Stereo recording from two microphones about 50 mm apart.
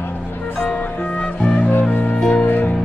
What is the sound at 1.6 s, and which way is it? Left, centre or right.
Music, left.